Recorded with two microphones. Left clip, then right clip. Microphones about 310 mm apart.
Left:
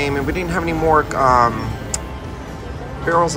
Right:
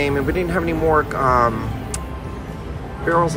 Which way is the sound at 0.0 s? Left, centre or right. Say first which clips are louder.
Right 1 dB; centre.